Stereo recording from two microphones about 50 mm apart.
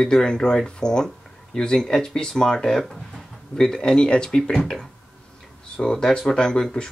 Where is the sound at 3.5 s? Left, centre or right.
Centre.